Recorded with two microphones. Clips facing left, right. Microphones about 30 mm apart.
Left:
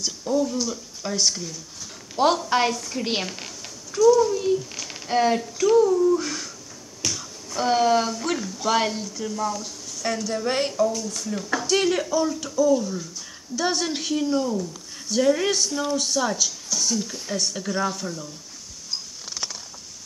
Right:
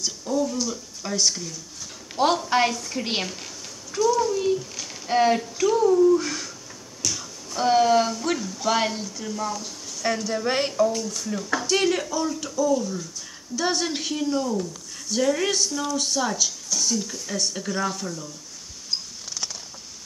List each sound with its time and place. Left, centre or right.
0.0 s a child's voice: centre
7.0 s finger snapping: left
7.5 s speech: centre